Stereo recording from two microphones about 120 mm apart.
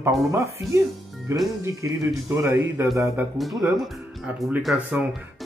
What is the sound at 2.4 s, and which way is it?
Speech, 25° right (ahead or behind).